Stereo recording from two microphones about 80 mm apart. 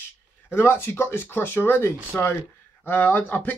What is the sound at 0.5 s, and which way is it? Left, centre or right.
Speech, left.